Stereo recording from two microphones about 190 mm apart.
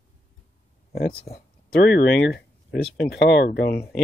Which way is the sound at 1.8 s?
55° left (ahead or behind).